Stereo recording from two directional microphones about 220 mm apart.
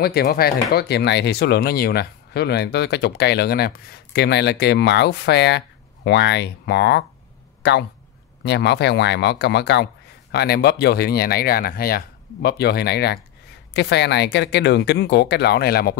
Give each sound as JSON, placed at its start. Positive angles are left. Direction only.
{"t": 0.0, "sound": "speech", "side_deg": 45}